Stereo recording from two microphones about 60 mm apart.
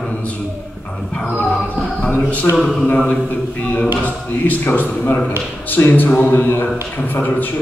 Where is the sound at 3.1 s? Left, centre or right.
Left.